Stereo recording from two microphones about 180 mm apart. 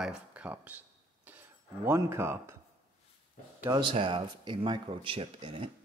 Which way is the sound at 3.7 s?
30° right (ahead or behind).